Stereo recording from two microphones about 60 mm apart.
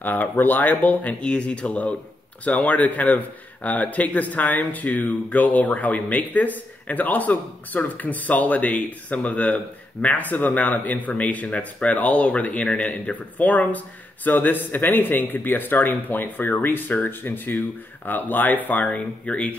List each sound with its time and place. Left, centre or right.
0.0 s speech: left
1.2 s a man's voice: centre